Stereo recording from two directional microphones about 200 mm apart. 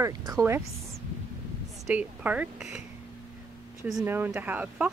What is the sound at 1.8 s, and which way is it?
A woman's voice, 5° right (ahead or behind).